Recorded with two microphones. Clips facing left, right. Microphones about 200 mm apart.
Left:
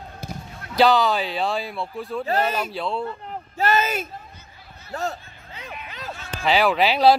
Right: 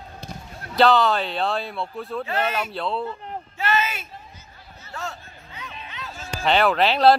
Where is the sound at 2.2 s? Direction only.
40° left (ahead or behind).